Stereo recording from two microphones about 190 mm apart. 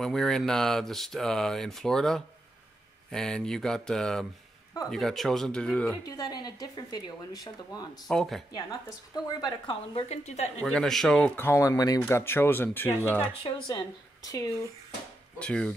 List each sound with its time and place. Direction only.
0.0 s speech: centre (ahead or behind)
6.0 s speech: 20° left (ahead or behind)
7.9 s speech: centre (ahead or behind)
8.5 s a woman's voice: 20° left (ahead or behind); by 10.5 s 35° left (ahead or behind)
10.6 s speech: 5° left (ahead or behind)
13.3 s speech: 25° left (ahead or behind)
15.3 s speech: 5° left (ahead or behind)